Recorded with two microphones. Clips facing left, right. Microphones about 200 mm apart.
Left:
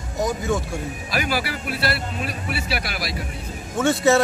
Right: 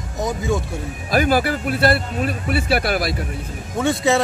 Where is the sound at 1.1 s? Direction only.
50° right (ahead or behind).